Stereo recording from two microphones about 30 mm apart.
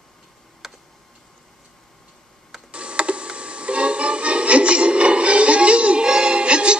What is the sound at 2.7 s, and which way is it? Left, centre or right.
Music, right.